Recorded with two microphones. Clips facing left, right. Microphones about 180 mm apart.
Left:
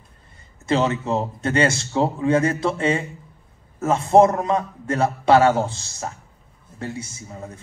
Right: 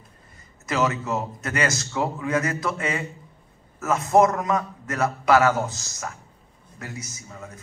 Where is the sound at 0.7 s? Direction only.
30° left (ahead or behind).